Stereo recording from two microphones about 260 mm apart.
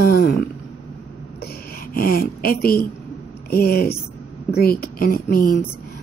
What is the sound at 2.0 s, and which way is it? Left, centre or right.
Speech, left.